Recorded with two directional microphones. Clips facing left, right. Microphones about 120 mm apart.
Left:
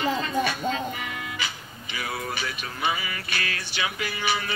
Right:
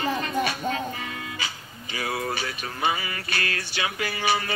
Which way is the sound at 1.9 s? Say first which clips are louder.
Right 3 dB; 35° right (ahead or behind).